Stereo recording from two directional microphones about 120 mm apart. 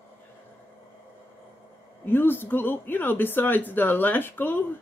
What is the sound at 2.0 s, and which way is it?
Speech, 15° left (ahead or behind).